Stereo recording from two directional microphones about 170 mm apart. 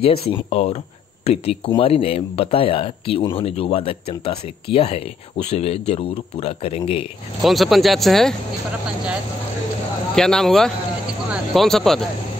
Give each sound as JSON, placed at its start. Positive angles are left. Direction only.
{"t": 0.0, "sound": "speech", "side_deg": 35}
{"t": 7.4, "sound": "speech", "side_deg": 0}
{"t": 10.1, "sound": "speech", "side_deg": 5}